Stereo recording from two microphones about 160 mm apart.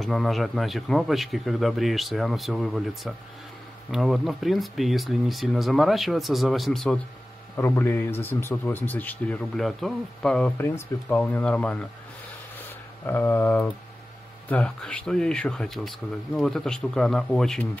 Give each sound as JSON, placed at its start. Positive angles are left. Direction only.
{"t": 0.0, "sound": "speech", "side_deg": 0}
{"t": 7.5, "sound": "speech", "side_deg": 15}
{"t": 12.5, "sound": "a sound", "side_deg": 10}
{"t": 14.5, "sound": "speech", "side_deg": 5}